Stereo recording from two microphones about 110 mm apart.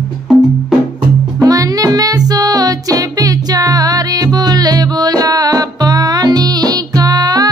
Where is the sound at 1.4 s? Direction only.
35° right (ahead or behind).